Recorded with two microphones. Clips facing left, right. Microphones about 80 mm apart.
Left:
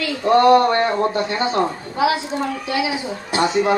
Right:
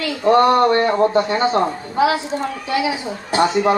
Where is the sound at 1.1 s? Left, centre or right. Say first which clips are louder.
Right 3 dB; right.